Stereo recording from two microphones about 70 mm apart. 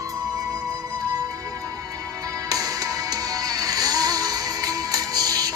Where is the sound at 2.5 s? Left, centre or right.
Right.